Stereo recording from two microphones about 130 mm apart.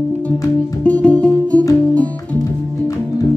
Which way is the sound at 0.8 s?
10° left (ahead or behind).